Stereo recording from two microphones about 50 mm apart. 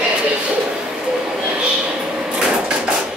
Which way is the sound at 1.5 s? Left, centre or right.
Centre.